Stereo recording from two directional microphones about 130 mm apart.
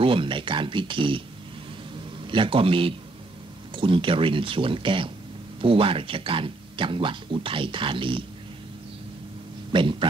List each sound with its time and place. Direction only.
0.0 s speech: 40° right (ahead or behind)
2.2 s a man's voice: 40° right (ahead or behind)
9.7 s speech: 40° right (ahead or behind)